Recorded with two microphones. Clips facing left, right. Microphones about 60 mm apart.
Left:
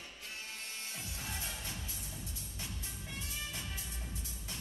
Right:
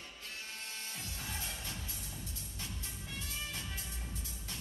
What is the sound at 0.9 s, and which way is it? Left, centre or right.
Music, centre.